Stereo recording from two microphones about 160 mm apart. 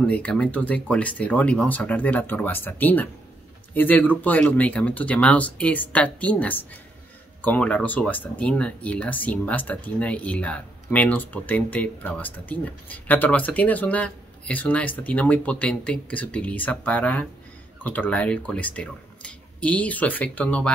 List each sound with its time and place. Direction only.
0.1 s speech: 5° left (ahead or behind)